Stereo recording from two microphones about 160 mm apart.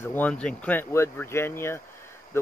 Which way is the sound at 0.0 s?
10° left (ahead or behind).